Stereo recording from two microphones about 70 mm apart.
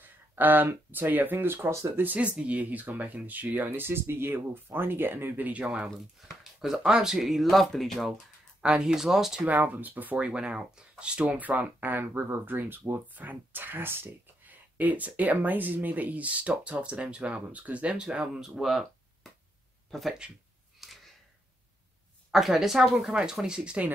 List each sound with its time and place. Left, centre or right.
0.0 s speech: right
2.0 s speech: centre
5.9 s speech: centre
8.5 s speech: centre
9.5 s speech: right
18.6 s a sound: centre
19.9 s speech: centre
20.8 s a sound: centre
22.3 s speech: centre